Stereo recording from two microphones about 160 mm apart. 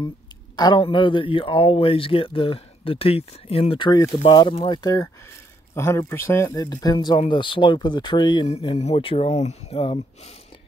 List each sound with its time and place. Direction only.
0.6 s speech: 30° left (ahead or behind)
8.5 s speech: 40° left (ahead or behind)